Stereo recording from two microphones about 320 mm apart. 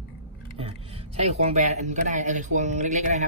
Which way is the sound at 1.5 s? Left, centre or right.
Right.